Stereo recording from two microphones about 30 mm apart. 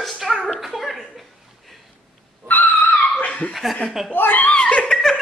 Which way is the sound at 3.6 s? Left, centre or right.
Centre.